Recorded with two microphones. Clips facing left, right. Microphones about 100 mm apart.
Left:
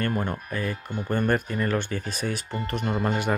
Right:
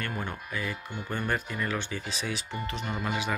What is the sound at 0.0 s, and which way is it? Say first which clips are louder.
Speech: left 7 dB; 45° left (ahead or behind).